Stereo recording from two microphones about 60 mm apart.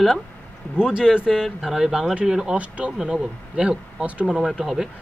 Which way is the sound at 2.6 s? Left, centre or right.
Right.